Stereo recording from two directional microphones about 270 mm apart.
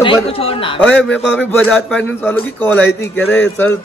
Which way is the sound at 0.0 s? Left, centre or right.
Centre.